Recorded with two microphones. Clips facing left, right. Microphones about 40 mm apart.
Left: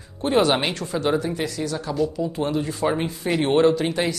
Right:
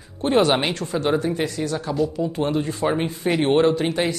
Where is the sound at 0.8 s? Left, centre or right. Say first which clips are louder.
Right 1 dB; right; by 3.7 s centre.